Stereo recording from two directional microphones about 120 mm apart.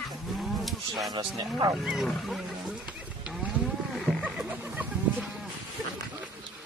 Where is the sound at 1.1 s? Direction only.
35° right (ahead or behind).